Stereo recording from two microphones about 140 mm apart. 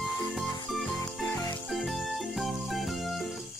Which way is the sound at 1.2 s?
25° left (ahead or behind).